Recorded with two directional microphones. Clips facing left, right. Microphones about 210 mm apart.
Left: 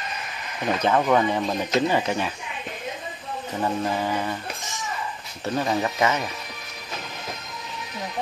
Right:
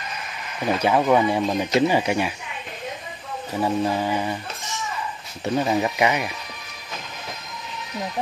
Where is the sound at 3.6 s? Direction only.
15° right (ahead or behind).